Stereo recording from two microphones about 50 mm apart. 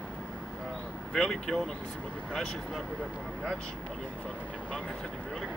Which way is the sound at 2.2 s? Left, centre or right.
Centre.